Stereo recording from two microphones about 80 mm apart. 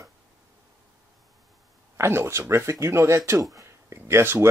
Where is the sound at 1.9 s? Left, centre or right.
Right.